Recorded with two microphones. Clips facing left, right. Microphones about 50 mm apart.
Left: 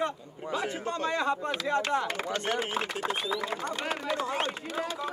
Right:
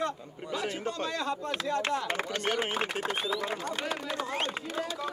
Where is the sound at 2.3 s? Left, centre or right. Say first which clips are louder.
Even; right.